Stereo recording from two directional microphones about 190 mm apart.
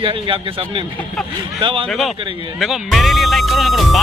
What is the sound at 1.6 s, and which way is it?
Speech, 25° right (ahead or behind).